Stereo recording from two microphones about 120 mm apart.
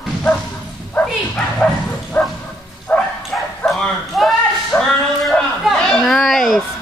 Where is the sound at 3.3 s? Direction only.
Centre (ahead or behind).